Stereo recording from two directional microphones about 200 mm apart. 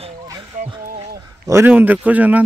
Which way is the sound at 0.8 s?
45° right (ahead or behind).